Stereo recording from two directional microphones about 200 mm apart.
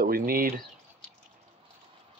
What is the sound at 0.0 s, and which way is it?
Speech, 45° right (ahead or behind).